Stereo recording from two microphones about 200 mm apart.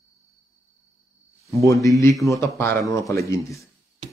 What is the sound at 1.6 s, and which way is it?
Speech, 15° left (ahead or behind).